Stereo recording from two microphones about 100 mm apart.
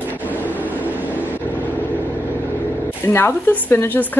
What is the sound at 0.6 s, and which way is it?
Train, 20° left (ahead or behind).